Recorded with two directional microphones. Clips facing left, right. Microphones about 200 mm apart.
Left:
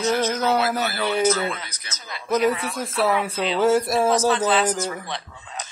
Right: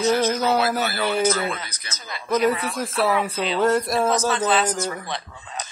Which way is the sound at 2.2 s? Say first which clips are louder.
Even; 5° left (ahead or behind).